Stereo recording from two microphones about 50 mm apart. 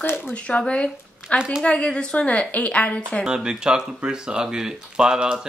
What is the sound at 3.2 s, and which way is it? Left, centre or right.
Speech, centre.